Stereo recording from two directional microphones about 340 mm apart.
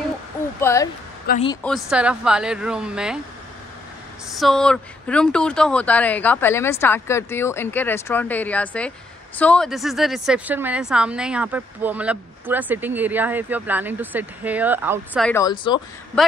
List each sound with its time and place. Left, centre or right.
0.6 s speech: centre
1.2 s speech: left
1.5 s a woman's voice: centre
4.3 s a woman's voice: centre